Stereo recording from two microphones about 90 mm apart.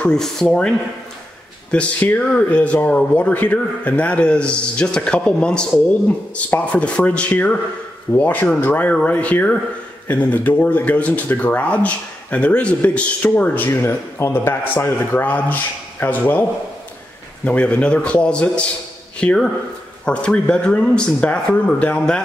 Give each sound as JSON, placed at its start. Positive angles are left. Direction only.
{"t": 0.0, "sound": "speech", "side_deg": 5}
{"t": 17.5, "sound": "speech", "side_deg": 15}